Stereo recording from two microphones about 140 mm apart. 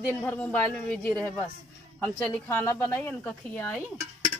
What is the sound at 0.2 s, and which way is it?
A woman's voice, 10° left (ahead or behind).